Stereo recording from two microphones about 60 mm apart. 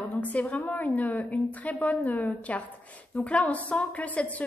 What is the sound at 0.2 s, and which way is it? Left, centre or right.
A woman's voice, left.